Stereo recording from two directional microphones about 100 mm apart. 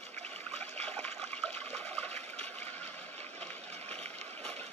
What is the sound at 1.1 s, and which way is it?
Water, 90° right.